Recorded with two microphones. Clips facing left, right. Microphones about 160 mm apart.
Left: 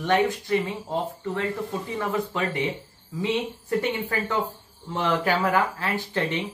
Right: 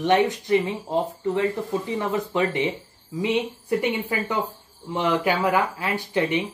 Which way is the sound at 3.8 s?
15° right (ahead or behind).